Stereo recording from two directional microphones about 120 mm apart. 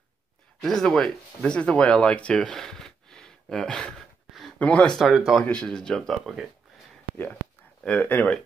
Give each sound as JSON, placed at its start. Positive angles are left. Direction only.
{"t": 0.6, "sound": "speech", "side_deg": 5}
{"t": 7.8, "sound": "speech", "side_deg": 10}